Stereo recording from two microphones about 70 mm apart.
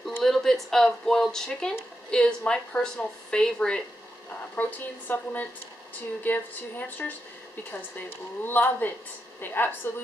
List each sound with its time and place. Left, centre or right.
0.2 s speech: centre
4.6 s a woman's voice: left